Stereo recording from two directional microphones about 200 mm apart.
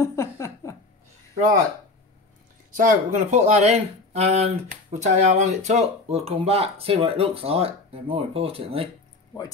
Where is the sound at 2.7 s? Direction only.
40° right (ahead or behind).